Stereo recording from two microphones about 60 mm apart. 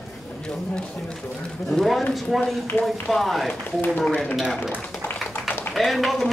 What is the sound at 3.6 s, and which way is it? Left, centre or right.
Speech, left.